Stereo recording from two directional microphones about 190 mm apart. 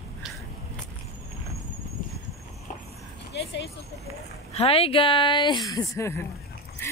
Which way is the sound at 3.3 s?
65° left (ahead or behind).